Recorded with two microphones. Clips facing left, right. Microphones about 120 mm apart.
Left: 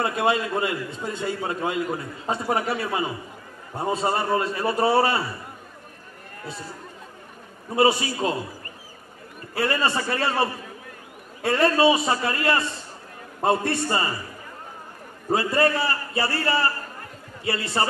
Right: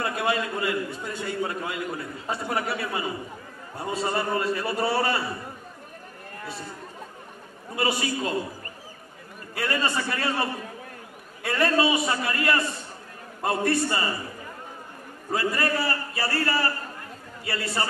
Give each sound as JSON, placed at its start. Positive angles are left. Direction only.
{"t": 0.0, "sound": "a man's voice", "side_deg": 25}
{"t": 7.7, "sound": "a man's voice", "side_deg": 30}
{"t": 9.6, "sound": "a man's voice", "side_deg": 30}
{"t": 15.3, "sound": "a man's voice", "side_deg": 30}